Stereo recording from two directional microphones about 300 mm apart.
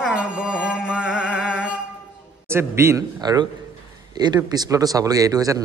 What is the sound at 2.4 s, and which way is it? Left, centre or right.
Speech, centre.